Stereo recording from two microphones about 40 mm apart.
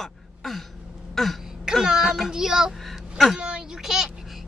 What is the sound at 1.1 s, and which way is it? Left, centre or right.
Throat clearing, centre.